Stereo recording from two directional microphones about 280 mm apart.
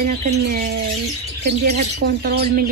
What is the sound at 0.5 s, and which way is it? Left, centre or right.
Speech, right.